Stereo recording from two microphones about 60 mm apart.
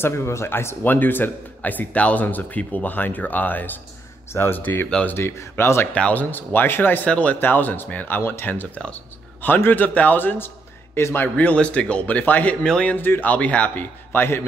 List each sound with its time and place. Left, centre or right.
0.0 s speech: left
0.8 s speech: left
4.3 s speech: left
4.6 s a man's voice: left
5.0 s speech: left
6.1 s a man's voice: left
7.1 s speech: left
7.3 s a man's voice: left
11.0 s speech: left
11.3 s speech: left
14.1 s a man's voice: left